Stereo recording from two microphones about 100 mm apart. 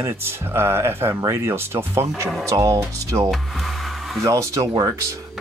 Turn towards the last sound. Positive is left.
turn(degrees=-35)  # may be behind; listen again after turning